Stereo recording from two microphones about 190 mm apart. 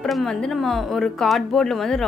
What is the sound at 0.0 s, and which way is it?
Speech, centre (ahead or behind).